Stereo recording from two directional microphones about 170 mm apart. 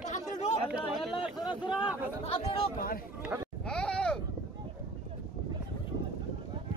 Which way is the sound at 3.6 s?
5° left (ahead or behind).